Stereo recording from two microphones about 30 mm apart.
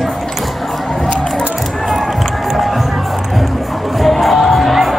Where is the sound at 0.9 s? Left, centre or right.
Left.